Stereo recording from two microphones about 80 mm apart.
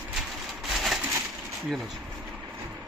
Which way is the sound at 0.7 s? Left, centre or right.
Centre.